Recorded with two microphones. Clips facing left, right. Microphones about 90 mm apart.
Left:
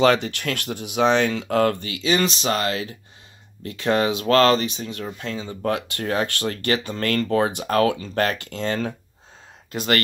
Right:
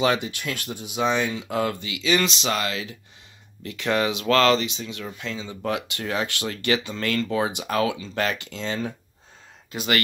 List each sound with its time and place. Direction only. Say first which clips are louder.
0.0 s speech: left 5 dB; 60° left (ahead or behind)
9.7 s speech: left 2 dB; 45° left (ahead or behind)